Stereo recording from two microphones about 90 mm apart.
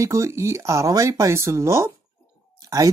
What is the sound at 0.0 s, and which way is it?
Speech, 35° right (ahead or behind).